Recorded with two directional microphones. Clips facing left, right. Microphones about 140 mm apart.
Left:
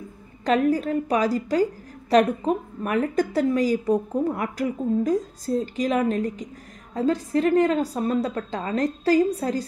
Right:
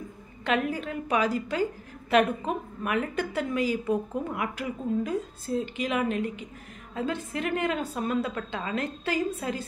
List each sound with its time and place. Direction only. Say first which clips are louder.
0.5 s a woman's voice: left 7 dB; 40° left (ahead or behind)